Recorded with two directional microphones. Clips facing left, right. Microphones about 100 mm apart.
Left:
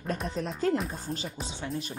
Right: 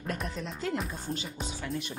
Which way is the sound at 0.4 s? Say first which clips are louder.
Left 9 dB; 40° left (ahead or behind).